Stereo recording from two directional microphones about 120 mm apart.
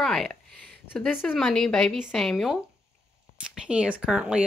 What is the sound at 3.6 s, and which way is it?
Speech, 10° right (ahead or behind).